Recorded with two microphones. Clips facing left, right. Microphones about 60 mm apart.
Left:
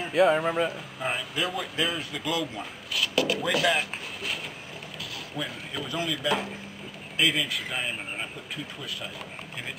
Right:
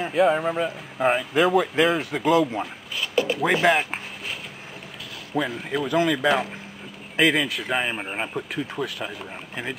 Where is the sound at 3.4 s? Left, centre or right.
Right.